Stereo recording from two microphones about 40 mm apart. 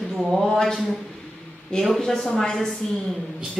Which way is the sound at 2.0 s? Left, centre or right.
Centre.